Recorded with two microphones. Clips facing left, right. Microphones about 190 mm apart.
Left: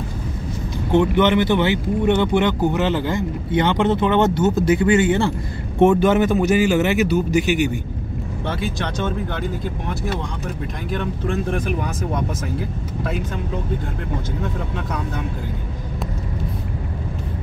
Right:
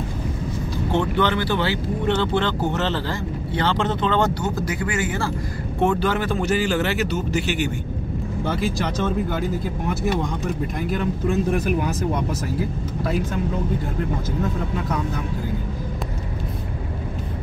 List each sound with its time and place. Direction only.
0.9 s speech: 20° left (ahead or behind)
8.5 s speech: centre (ahead or behind)
10.9 s speech: 5° right (ahead or behind)